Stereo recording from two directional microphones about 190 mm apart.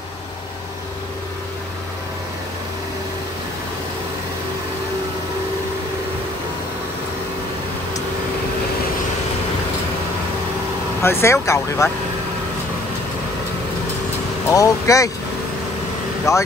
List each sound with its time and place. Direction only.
11.0 s speech: 15° left (ahead or behind)
14.5 s speech: 15° left (ahead or behind)
16.3 s speech: 15° left (ahead or behind)